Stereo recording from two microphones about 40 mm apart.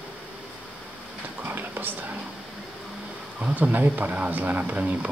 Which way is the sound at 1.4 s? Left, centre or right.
Right.